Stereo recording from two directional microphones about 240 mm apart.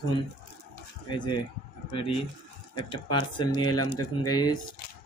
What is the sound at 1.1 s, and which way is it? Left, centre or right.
Speech, centre.